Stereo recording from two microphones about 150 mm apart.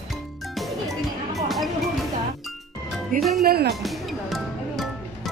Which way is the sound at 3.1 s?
70° right (ahead or behind).